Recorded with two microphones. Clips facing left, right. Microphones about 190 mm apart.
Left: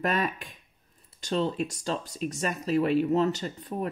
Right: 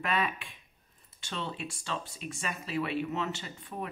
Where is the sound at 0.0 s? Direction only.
40° left (ahead or behind).